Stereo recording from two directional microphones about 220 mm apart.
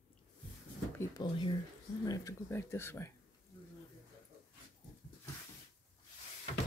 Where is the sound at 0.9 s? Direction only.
15° left (ahead or behind).